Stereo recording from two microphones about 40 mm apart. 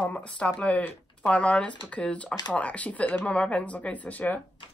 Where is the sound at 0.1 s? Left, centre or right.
Left.